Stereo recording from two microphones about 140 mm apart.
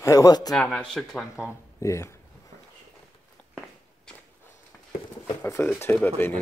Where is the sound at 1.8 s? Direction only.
20° left (ahead or behind).